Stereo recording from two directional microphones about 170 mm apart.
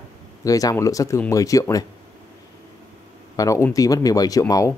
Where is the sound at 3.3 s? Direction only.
20° left (ahead or behind).